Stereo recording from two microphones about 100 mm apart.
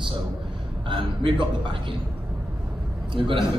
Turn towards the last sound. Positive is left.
turn(degrees=-55)  # may be behind; listen again after turning